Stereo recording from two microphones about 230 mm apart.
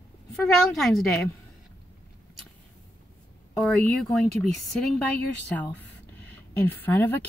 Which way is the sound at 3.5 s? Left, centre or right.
Centre.